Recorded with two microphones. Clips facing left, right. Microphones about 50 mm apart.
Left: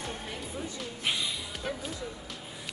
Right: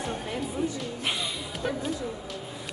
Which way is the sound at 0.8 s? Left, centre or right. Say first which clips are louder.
Right 2 dB; centre.